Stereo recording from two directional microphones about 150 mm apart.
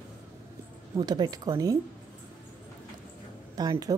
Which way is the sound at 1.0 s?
25° right (ahead or behind).